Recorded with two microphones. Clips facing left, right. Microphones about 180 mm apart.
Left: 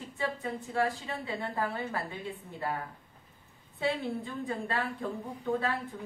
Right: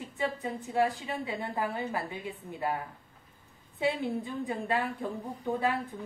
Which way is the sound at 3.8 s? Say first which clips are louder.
Right 2 dB; 15° right (ahead or behind).